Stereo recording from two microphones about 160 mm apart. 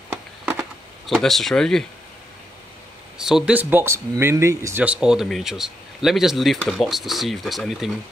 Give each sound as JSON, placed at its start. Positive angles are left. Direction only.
{"t": 0.1, "sound": "a sound", "side_deg": -15}
{"t": 1.0, "sound": "speech", "side_deg": 0}
{"t": 3.2, "sound": "speech", "side_deg": -5}